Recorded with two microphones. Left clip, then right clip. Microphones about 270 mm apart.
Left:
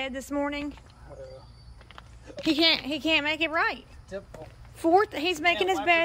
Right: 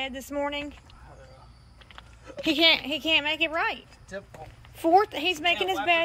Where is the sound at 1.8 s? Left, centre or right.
Centre.